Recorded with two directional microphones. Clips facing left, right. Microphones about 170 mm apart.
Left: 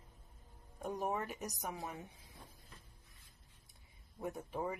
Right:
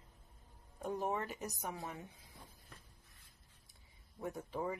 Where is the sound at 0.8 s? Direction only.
15° left (ahead or behind).